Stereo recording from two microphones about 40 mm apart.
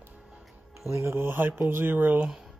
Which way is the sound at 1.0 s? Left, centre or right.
Right.